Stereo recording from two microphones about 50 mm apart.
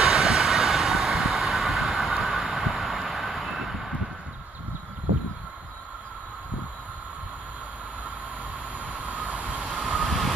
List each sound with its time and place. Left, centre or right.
0.0 s train: centre
8.7 s train: right
9.6 s train: centre
10.0 s vehicle: centre